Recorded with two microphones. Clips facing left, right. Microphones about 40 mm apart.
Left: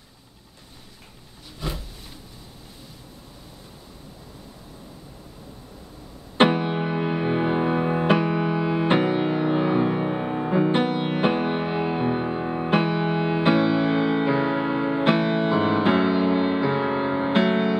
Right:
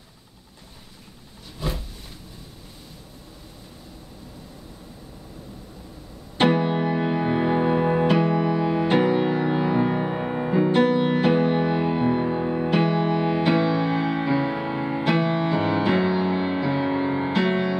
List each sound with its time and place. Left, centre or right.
6.4 s music: centre
8.2 s music: centre
10.5 s music: left